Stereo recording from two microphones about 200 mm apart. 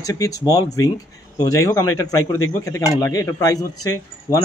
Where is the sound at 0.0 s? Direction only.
15° left (ahead or behind).